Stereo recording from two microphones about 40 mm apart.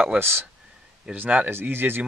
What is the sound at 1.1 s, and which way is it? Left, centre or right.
Speech, right.